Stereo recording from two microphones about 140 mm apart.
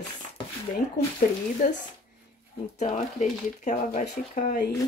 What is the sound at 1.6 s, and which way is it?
Speech, 75° left (ahead or behind).